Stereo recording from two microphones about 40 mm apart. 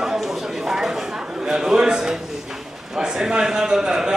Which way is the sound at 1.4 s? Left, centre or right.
Centre.